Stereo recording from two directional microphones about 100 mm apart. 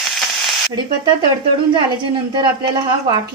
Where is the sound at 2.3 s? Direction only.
55° right (ahead or behind).